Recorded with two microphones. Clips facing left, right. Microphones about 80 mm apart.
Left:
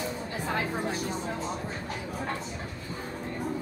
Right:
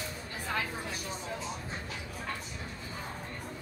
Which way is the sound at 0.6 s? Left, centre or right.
Left.